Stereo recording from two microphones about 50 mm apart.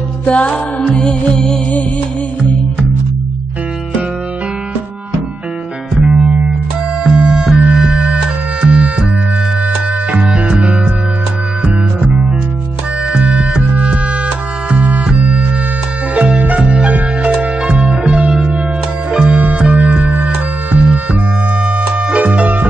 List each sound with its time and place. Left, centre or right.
0.2 s music: left
5.9 s music: right
10.2 s music: centre
16.2 s music: right